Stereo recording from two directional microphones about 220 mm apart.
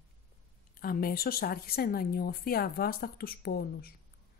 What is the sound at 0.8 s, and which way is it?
Speech, 40° left (ahead or behind).